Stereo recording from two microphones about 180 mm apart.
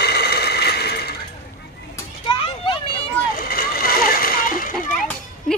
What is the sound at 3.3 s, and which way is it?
Splash, 55° left (ahead or behind).